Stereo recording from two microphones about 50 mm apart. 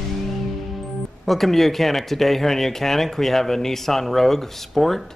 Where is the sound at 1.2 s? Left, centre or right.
Centre.